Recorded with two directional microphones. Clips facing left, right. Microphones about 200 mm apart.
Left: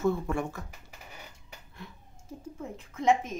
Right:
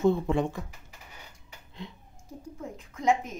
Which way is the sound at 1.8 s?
20° right (ahead or behind).